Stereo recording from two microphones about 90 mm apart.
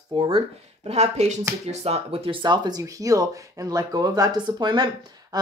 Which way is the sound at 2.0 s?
90° right.